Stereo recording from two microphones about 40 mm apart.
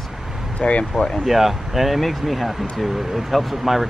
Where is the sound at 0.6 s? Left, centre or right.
Left.